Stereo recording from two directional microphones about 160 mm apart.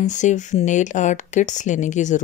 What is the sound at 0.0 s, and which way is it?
Speech, 50° left (ahead or behind).